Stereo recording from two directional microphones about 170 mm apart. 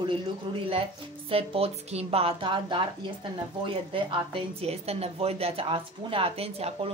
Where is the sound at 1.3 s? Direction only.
35° right (ahead or behind).